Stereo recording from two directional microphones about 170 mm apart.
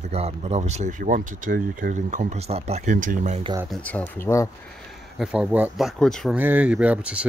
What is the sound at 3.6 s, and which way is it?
Speech, 5° left (ahead or behind).